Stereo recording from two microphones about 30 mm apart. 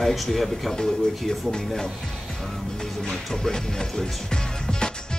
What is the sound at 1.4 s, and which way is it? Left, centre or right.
Speech, centre.